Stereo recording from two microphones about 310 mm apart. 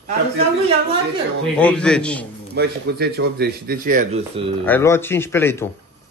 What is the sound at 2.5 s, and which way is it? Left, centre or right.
Speech, right.